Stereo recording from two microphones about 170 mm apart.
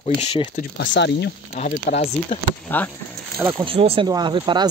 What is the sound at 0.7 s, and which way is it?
Speech, 90° left.